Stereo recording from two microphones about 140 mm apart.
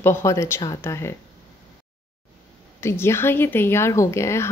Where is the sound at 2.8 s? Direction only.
20° left (ahead or behind).